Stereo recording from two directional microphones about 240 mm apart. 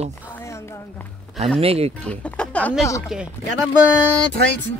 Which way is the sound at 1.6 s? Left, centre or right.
Right.